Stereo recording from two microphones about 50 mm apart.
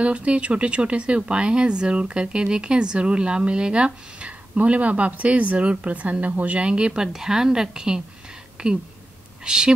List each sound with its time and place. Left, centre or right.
0.0 s speech: right